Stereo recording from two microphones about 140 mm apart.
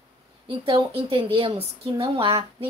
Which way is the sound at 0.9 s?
40° right (ahead or behind).